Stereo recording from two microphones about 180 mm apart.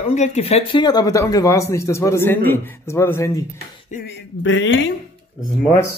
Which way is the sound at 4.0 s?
90° left.